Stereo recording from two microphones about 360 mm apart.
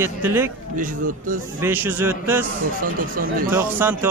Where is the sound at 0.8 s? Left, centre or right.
Right.